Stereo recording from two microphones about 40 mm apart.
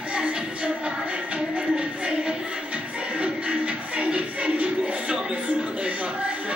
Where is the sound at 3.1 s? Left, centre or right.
Right.